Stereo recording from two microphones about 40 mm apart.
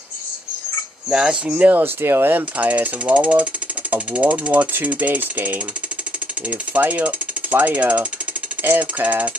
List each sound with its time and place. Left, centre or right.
1.1 s speech: right
1.8 s speech: right
2.3 s speech: right
6.8 s speech: right